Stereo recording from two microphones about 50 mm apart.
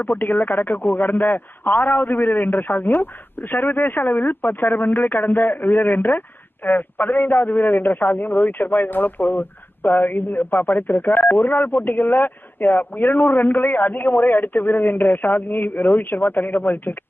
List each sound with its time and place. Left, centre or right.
0.0 s speech: left